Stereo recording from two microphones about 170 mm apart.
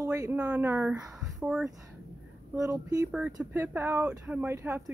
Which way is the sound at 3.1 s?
5° right (ahead or behind).